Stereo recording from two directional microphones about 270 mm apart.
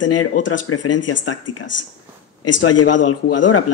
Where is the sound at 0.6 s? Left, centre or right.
Left.